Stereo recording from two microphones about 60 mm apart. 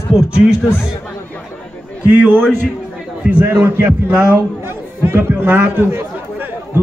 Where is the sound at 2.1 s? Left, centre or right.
Right.